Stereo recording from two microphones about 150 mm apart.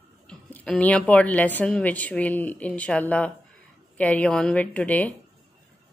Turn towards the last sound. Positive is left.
turn(degrees=10)  # may be behind; listen again after turning